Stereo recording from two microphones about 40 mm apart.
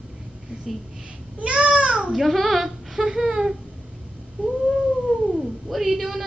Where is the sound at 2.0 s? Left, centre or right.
Centre.